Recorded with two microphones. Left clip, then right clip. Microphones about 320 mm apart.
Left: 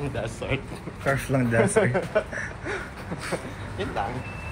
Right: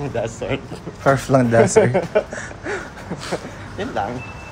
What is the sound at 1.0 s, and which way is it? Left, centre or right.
Speech, centre.